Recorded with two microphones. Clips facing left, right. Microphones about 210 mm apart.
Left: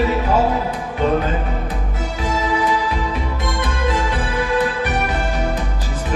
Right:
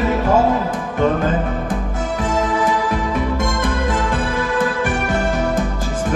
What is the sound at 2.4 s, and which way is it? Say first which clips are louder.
Music: even; 50° right (ahead or behind).